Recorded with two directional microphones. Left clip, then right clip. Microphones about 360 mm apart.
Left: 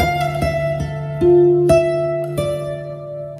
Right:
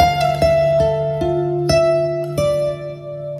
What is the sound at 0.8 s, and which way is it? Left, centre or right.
Music, right.